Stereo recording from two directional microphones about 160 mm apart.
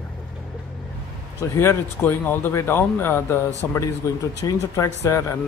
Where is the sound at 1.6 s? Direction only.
15° left (ahead or behind).